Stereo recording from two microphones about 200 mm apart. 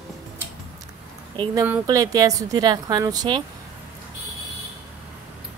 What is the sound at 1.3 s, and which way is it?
Speech, 25° right (ahead or behind).